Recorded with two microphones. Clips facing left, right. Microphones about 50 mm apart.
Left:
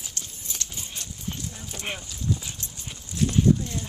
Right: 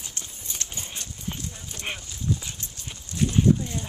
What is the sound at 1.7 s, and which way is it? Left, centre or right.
Clip-clop, centre.